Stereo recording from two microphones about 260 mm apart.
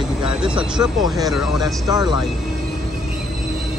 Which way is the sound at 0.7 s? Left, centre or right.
Centre.